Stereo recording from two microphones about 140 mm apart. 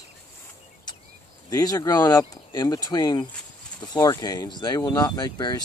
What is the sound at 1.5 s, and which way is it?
Speech, 25° left (ahead or behind).